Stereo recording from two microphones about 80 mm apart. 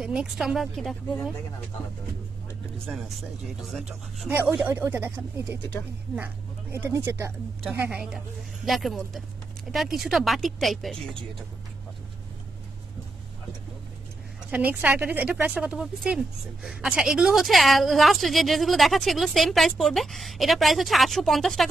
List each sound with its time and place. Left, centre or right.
0.0 s speech: centre
2.9 s speech: centre
4.3 s speech: right
7.0 s speech: right
7.9 s a woman's voice: centre
14.5 s a woman's voice: right; by 21.6 s centre